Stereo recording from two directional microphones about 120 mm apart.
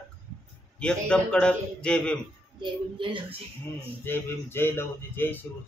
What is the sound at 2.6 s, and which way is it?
Speech, 45° right (ahead or behind).